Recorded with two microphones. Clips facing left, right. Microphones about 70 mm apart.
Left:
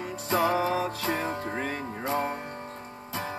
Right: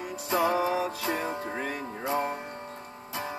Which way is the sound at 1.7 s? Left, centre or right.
Left.